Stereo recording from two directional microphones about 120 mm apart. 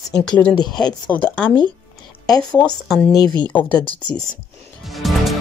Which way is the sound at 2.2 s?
30° left (ahead or behind).